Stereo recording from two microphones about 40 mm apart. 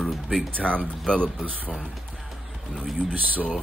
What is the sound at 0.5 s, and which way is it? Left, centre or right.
Speech, left.